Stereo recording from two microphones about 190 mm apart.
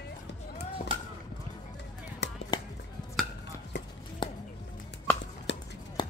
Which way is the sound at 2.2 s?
60° left (ahead or behind).